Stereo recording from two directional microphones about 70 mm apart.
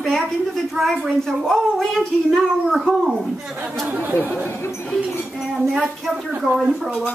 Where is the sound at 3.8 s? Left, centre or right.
Right.